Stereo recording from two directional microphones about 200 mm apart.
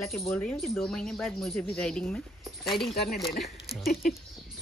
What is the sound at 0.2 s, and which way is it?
Speech, 10° left (ahead or behind).